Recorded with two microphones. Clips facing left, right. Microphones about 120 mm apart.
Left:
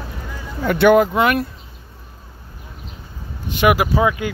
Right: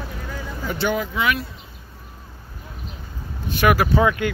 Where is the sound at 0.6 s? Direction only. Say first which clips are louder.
Left 11 dB; 60° left (ahead or behind).